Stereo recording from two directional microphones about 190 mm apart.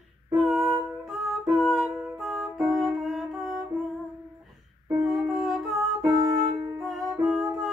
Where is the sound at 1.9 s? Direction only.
15° right (ahead or behind).